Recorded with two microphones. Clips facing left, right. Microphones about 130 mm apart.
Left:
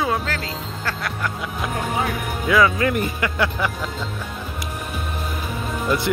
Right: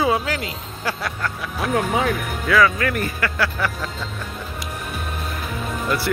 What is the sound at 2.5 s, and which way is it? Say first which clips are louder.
Speech: even; 20° left (ahead or behind).